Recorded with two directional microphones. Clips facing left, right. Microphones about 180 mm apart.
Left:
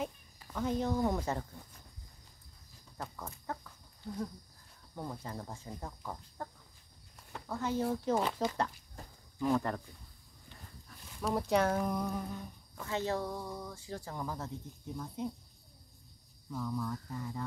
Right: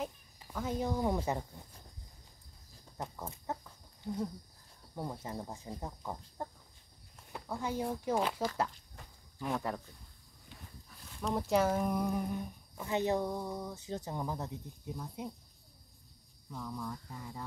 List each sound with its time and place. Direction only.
0.4 s speech: 10° right (ahead or behind)
3.0 s chicken: 20° right (ahead or behind)
5.1 s speech: 20° right (ahead or behind)
8.1 s speech: centre (ahead or behind)
9.0 s walk: 40° left (ahead or behind)
9.4 s speech: 5° right (ahead or behind)
11.1 s speech: 5° left (ahead or behind); by 14.5 s 20° right (ahead or behind)
15.0 s speech: 10° right (ahead or behind)
16.4 s speech: 5° right (ahead or behind)